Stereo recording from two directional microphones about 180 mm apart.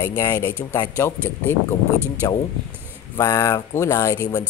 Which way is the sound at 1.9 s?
15° right (ahead or behind).